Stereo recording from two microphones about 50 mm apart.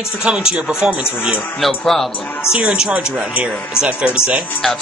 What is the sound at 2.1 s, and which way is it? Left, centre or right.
Speech, left.